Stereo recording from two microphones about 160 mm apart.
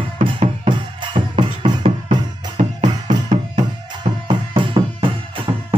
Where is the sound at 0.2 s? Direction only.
30° right (ahead or behind).